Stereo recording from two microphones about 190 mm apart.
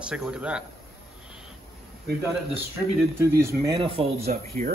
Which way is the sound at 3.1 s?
15° right (ahead or behind).